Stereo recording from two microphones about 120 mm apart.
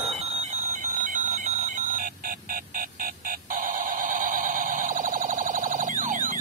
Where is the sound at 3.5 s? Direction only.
90° right.